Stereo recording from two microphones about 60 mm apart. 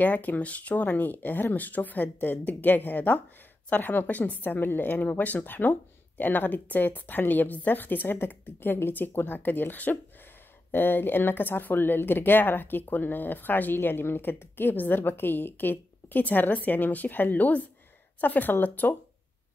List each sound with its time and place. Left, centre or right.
0.0 s speech: left